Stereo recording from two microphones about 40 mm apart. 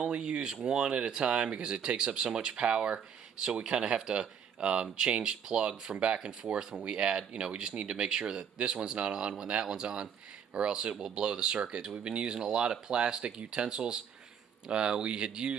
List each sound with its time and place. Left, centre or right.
0.1 s speech: right